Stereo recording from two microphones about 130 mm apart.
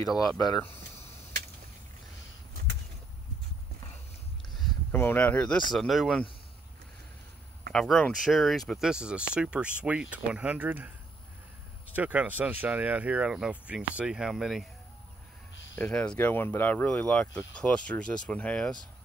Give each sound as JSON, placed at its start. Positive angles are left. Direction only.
{"t": 4.9, "sound": "speech", "side_deg": 15}
{"t": 7.7, "sound": "speech", "side_deg": 5}
{"t": 11.9, "sound": "speech", "side_deg": -10}
{"t": 15.7, "sound": "speech", "side_deg": 10}